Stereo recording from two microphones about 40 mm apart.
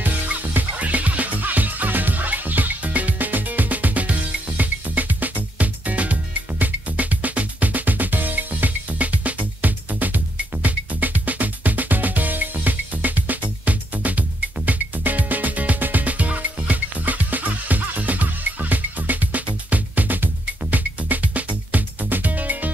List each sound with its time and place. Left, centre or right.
0.0 s music: right